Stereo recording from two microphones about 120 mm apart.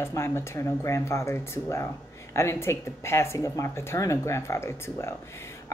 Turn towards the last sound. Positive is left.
turn(degrees=20)  # may be behind; listen again after turning